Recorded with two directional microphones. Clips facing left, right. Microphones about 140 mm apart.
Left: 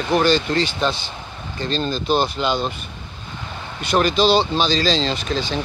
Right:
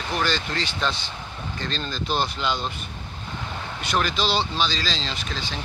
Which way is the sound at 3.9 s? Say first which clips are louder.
Left 8 dB; 20° left (ahead or behind).